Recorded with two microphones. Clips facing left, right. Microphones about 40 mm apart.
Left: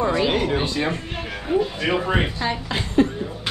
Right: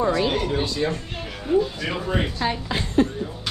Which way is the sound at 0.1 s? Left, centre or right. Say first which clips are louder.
Left 2 dB; left.